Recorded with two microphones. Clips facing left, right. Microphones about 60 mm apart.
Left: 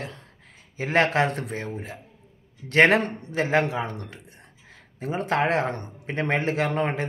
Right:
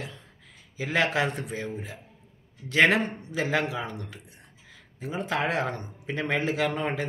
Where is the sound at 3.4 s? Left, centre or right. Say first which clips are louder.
Left 5 dB; left.